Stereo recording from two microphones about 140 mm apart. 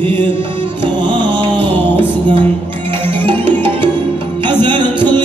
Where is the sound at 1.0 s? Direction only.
35° right (ahead or behind).